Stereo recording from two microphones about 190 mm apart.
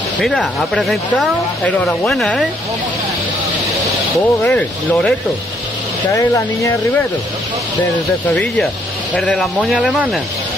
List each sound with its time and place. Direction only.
0.2 s speech: centre (ahead or behind)
4.4 s speech: 5° left (ahead or behind)
6.1 s speech: 15° left (ahead or behind)
8.3 s speech: 5° left (ahead or behind)